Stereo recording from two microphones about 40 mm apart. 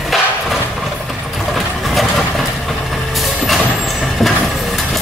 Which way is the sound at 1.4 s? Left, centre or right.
Centre.